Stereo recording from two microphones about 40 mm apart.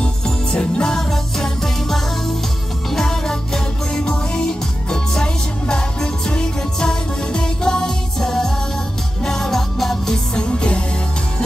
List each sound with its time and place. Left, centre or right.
0.0 s jingle bell: left
0.9 s music: centre
10.4 s music: left